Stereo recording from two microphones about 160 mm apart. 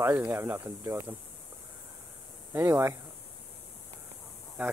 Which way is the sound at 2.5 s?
15° right (ahead or behind).